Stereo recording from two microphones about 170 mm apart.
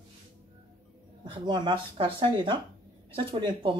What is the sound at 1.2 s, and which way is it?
Speech, 25° right (ahead or behind).